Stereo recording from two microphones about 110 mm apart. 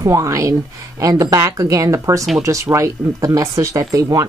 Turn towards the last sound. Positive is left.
turn(degrees=-30)  # may be behind; listen again after turning